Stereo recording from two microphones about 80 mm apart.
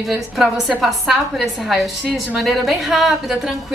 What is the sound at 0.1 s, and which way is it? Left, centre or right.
A woman's voice, centre.